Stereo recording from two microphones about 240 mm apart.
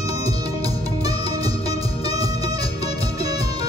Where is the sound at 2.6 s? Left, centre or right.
Left.